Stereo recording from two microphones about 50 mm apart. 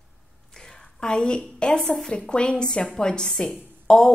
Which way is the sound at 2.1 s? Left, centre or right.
Centre.